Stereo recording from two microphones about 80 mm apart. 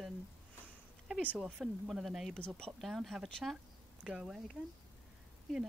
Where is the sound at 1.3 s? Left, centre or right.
Centre.